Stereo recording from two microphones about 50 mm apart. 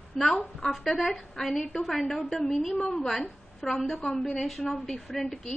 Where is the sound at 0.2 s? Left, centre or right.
Centre.